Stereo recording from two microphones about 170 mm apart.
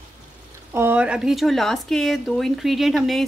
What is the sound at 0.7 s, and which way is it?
Speech, 10° right (ahead or behind).